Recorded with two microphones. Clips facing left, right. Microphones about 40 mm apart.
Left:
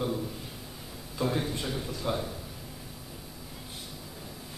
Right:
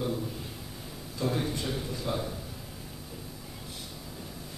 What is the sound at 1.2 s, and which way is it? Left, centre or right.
Speech, centre.